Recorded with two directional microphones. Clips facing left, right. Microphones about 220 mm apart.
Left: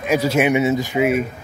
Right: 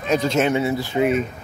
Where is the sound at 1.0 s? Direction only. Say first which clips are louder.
Even; 5° left (ahead or behind).